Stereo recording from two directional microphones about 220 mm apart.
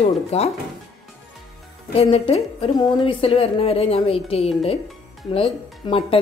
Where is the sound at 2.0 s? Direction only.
25° left (ahead or behind).